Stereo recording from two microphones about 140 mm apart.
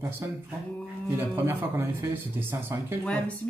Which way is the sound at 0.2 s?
20° right (ahead or behind).